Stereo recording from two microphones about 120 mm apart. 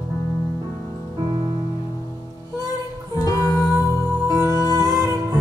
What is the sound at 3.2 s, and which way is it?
Music, 30° left (ahead or behind).